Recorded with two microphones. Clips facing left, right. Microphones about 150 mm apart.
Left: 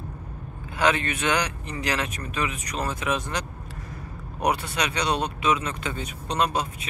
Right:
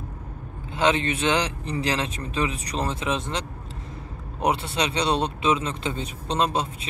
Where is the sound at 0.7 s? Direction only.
25° right (ahead or behind).